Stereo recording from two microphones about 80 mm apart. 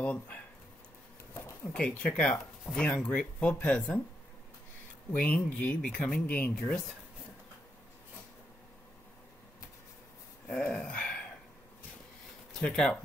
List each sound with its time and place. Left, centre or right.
0.0 s speech: centre
1.7 s speech: centre
5.1 s speech: centre
10.5 s a sound: centre
12.5 s speech: centre